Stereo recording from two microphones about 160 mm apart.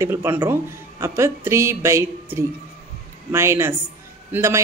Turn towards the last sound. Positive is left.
turn(degrees=-15)  # may be behind; listen again after turning